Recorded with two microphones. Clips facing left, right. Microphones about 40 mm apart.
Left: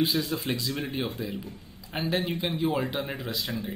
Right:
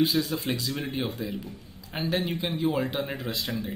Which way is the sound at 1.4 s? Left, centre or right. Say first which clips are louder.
Right 1 dB; centre.